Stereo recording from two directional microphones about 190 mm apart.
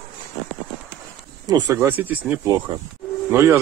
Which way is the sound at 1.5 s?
20° right (ahead or behind).